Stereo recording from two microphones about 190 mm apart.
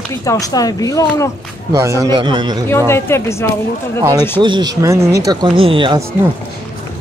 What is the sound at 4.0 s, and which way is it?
Speech, 20° right (ahead or behind).